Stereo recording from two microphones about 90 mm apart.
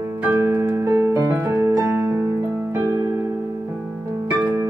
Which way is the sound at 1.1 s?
30° right (ahead or behind).